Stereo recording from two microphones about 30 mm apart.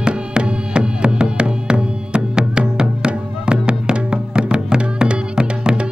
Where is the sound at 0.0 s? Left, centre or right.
Right.